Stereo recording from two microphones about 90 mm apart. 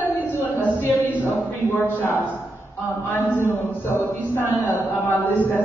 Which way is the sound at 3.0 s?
20° left (ahead or behind).